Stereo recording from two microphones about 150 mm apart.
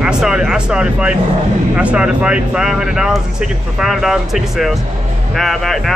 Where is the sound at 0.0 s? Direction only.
5° right (ahead or behind).